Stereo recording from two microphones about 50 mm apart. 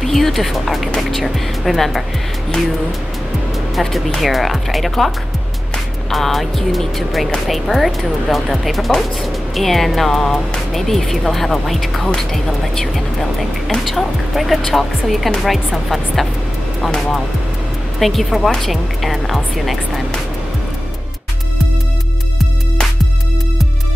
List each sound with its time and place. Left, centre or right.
0.0 s speech: centre
3.7 s speech: centre